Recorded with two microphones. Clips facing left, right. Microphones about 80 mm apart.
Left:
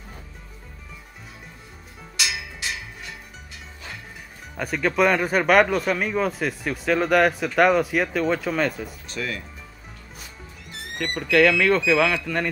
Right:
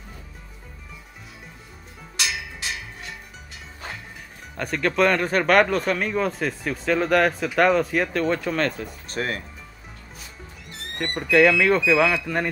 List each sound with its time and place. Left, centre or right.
4.6 s speech: centre
9.1 s speech: right
11.1 s speech: centre